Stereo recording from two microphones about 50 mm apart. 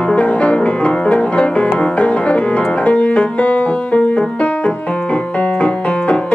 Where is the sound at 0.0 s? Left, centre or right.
Left.